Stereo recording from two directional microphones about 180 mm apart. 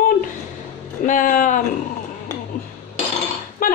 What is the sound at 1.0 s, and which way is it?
Speech, 50° left (ahead or behind).